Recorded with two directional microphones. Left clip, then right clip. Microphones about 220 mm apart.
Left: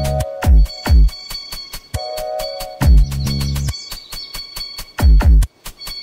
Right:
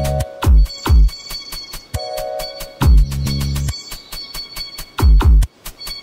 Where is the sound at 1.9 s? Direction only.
20° left (ahead or behind).